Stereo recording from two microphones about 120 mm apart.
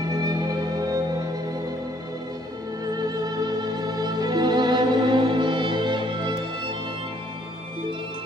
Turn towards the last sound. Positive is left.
turn(degrees=-40)  # may be behind; listen again after turning